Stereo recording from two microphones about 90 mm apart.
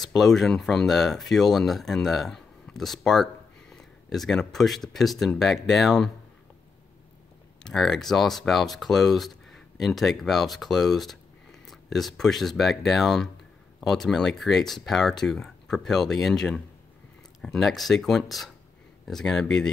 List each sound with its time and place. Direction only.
0.0 s speech: centre (ahead or behind)
7.6 s speech: 5° left (ahead or behind)